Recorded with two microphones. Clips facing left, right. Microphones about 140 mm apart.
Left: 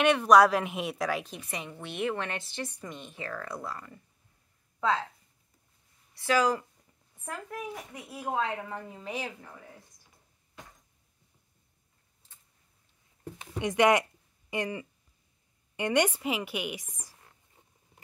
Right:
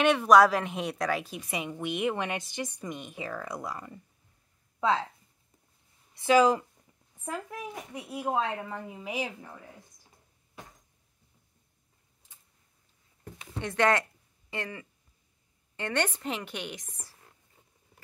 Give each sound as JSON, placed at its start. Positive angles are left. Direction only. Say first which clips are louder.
{"t": 0.0, "sound": "a woman's voice", "louder": "even", "side_deg": 0}
{"t": 6.1, "sound": "a woman's voice", "louder": "right 4 dB", "side_deg": -20}
{"t": 13.6, "sound": "a woman's voice", "louder": "left 2 dB", "side_deg": 15}